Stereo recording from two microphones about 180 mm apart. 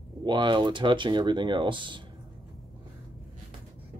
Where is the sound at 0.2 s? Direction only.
25° right (ahead or behind).